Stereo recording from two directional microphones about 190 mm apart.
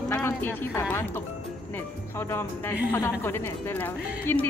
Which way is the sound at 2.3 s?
10° left (ahead or behind).